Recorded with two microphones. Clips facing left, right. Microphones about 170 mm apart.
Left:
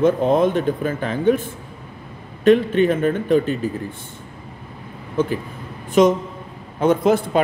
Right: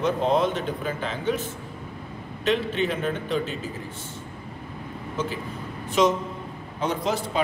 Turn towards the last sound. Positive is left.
turn(degrees=55)  # may be behind; listen again after turning